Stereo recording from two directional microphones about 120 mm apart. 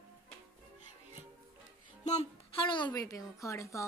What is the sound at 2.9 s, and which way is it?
Speech, 30° left (ahead or behind).